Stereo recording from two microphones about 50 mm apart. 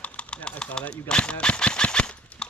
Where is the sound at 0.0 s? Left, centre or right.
Left.